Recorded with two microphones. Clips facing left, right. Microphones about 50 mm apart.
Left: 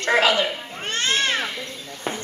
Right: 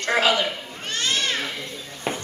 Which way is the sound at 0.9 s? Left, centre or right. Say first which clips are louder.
Left 3 dB; left.